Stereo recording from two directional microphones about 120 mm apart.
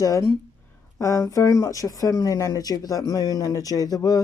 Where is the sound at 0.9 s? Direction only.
25° left (ahead or behind).